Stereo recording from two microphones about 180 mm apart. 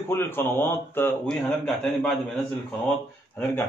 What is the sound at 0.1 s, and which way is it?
Speech, 10° left (ahead or behind).